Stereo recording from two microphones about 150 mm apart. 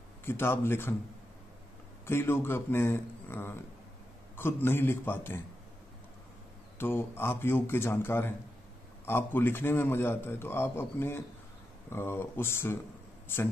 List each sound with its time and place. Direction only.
0.2 s a man's voice: 15° left (ahead or behind)
2.0 s a man's voice: 15° left (ahead or behind)
6.8 s a man's voice: 15° left (ahead or behind)